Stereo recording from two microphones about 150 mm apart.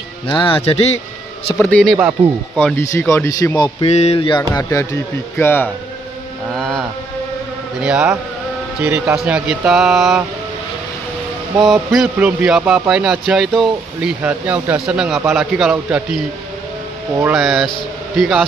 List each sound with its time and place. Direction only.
0.3 s speech: 35° left (ahead or behind)
1.6 s speech: 10° left (ahead or behind)
2.8 s speech: 20° left (ahead or behind)
3.8 s mantra: 45° left (ahead or behind)
4.2 s speech: 30° left (ahead or behind)
5.4 s speech: 15° left (ahead or behind)
6.5 s speech: centre (ahead or behind); by 9.1 s 15° right (ahead or behind)
9.1 s speech: 5° right (ahead or behind)
11.6 s speech: centre (ahead or behind)
17.3 s speech: centre (ahead or behind)